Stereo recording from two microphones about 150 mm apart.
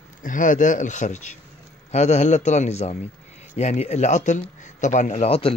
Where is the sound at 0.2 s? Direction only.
60° left (ahead or behind).